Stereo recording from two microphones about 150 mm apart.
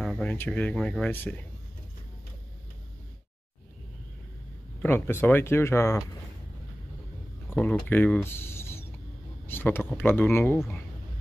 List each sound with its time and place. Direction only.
0.0 s speech: 5° left (ahead or behind)
4.8 s speech: 15° left (ahead or behind)
7.4 s speech: 10° left (ahead or behind)